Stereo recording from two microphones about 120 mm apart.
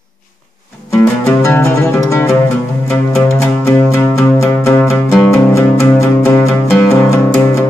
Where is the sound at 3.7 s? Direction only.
20° left (ahead or behind).